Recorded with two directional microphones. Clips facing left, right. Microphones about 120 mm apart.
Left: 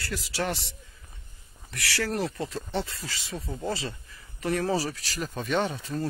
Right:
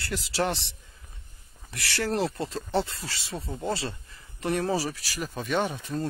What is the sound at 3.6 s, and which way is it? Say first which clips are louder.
Speech: right 2 dB; 30° right (ahead or behind).